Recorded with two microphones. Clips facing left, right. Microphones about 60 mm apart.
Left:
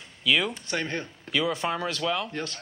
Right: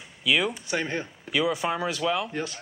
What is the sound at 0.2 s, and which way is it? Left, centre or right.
Speech, centre.